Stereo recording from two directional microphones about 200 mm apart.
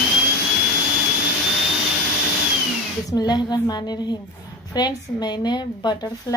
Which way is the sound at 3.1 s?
20° left (ahead or behind).